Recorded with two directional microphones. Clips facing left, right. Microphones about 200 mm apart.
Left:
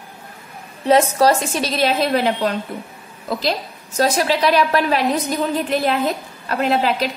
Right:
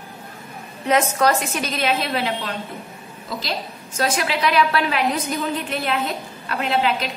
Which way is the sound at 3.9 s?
35° left (ahead or behind).